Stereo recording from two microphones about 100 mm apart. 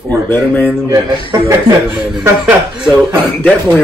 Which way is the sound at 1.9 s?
10° right (ahead or behind).